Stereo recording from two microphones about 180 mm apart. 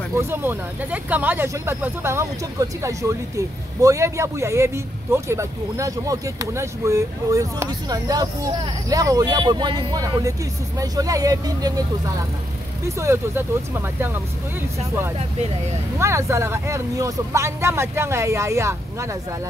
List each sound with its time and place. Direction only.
0.1 s speech: 15° right (ahead or behind)
12.8 s speech: 15° right (ahead or behind)
16.0 s speech: 15° right (ahead or behind)